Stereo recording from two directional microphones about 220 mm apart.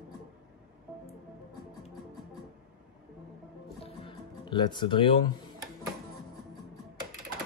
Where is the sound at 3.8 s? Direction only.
25° left (ahead or behind).